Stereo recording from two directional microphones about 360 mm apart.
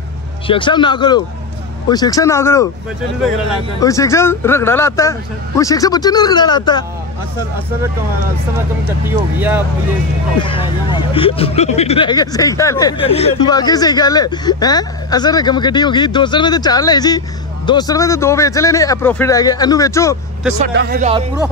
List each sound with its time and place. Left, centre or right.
0.5 s speech: centre
3.8 s speech: centre
10.4 s speech: centre
20.6 s speech: right